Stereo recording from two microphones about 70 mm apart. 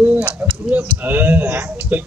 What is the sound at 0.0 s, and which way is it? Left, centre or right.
Speech, right.